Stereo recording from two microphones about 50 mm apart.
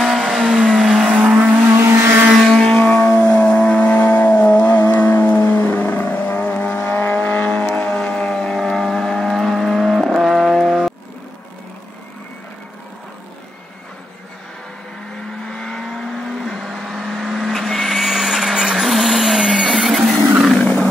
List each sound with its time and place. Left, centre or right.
0.0 s vehicle: centre
1.0 s vehicle: right
2.6 s vehicle: left; by 10.8 s centre
15.4 s vehicle: centre
16.5 s vehicle: centre
20.5 s vehicle: centre